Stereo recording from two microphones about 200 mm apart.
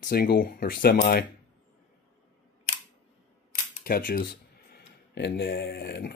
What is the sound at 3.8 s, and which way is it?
Speech, 45° left (ahead or behind).